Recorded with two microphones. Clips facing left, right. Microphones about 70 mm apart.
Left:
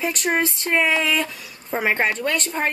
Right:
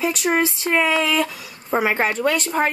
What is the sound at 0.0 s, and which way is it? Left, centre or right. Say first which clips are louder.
A woman's voice: right 2 dB; centre.